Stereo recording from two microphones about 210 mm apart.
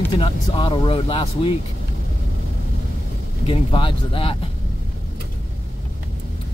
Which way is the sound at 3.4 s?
25° left (ahead or behind).